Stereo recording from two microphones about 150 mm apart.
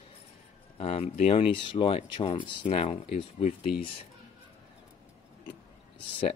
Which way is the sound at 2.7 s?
45° left (ahead or behind).